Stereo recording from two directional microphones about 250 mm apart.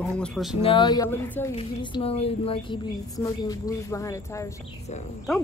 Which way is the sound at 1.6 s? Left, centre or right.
Left.